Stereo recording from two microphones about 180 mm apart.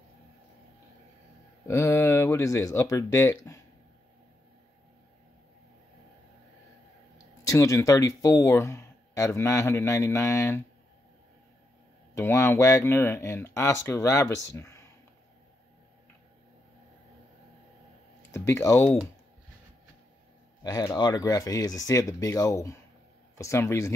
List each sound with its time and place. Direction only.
1.7 s speech: 15° left (ahead or behind)
7.4 s speech: 20° left (ahead or behind)
12.2 s speech: 15° left (ahead or behind)
18.3 s speech: 15° left (ahead or behind)
20.6 s speech: 20° left (ahead or behind)